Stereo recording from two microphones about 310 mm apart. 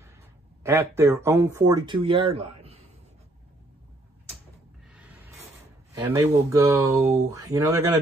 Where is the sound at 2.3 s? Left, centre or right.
Centre.